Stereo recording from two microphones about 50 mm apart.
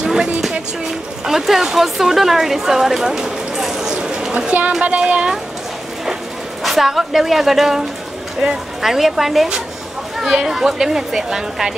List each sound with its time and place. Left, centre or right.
0.0 s a sound: centre
1.2 s a woman's voice: centre
3.9 s chatter: centre
4.8 s speech: right
6.6 s a woman's voice: centre